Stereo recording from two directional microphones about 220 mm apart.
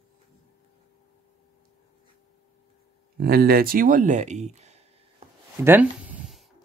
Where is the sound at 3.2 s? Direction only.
45° right (ahead or behind).